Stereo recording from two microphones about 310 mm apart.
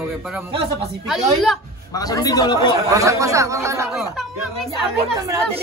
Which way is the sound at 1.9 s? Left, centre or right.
Centre.